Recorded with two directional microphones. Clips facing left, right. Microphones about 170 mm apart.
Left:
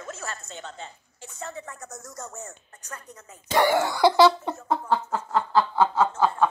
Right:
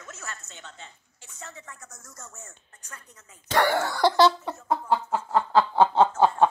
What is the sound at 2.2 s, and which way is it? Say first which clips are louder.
Speech: left 7 dB; 65° left (ahead or behind).